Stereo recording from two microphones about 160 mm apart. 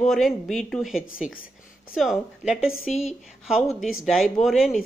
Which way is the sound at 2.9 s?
45° left (ahead or behind).